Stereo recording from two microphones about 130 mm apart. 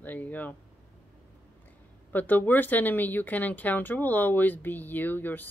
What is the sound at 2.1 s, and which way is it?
Speech, 15° left (ahead or behind).